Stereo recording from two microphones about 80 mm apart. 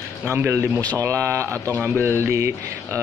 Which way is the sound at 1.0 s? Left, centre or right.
Right.